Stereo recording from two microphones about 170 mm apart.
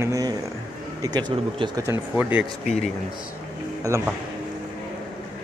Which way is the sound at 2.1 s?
10° right (ahead or behind).